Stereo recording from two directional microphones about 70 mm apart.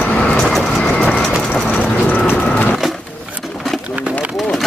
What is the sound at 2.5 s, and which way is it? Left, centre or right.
Wood, centre.